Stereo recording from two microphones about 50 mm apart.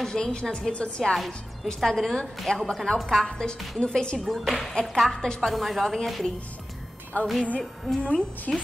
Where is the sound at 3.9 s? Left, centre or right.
Centre.